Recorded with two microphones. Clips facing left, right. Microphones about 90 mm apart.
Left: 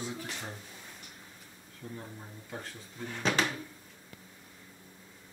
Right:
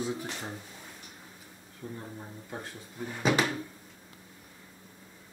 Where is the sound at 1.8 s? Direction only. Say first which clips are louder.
Right 3 dB; 25° right (ahead or behind).